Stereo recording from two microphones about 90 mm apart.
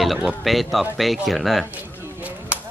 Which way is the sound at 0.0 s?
Centre (ahead or behind).